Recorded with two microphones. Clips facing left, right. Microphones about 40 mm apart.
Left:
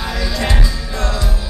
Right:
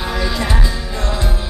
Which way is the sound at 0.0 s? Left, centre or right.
Centre.